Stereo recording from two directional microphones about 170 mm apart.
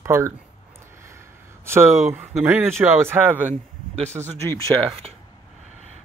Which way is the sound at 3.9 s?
40° right (ahead or behind).